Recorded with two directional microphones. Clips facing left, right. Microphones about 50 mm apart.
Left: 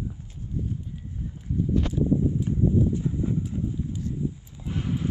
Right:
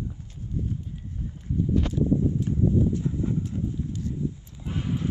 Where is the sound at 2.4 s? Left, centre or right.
Centre.